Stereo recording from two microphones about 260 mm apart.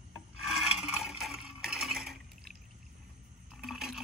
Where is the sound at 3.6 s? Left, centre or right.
Centre.